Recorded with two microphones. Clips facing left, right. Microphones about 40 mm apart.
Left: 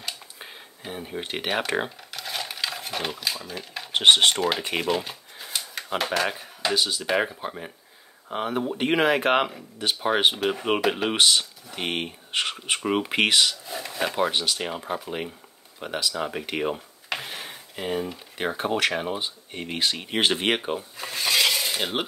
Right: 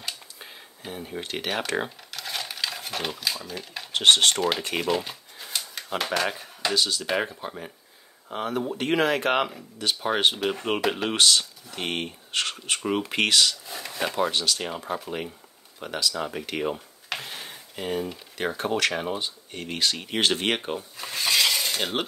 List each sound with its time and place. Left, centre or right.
0.4 s typewriter: centre
4.0 s speech: centre
13.7 s speech: centre
14.3 s speech: centre